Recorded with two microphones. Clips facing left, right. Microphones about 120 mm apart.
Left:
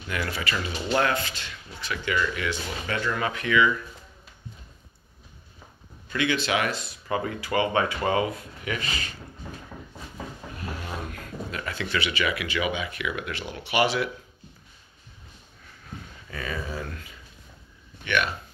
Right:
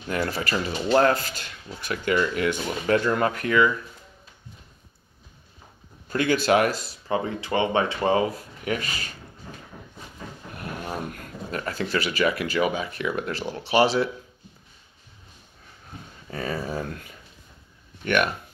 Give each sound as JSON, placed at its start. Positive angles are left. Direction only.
{"t": 0.1, "sound": "speech", "side_deg": -40}
{"t": 6.0, "sound": "speech", "side_deg": -45}
{"t": 7.1, "sound": "speech", "side_deg": -25}
{"t": 11.5, "sound": "speech", "side_deg": -40}
{"t": 16.3, "sound": "speech", "side_deg": -40}